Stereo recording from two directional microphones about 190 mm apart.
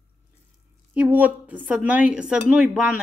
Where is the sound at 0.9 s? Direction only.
10° right (ahead or behind).